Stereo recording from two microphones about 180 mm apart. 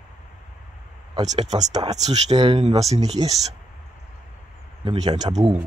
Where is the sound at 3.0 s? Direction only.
20° right (ahead or behind).